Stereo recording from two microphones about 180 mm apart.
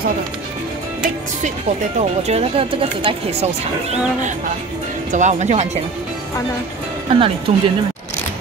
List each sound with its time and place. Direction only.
2.0 s speech: 35° right (ahead or behind)
5.1 s speech: 40° right (ahead or behind)
7.1 s speech: 30° right (ahead or behind)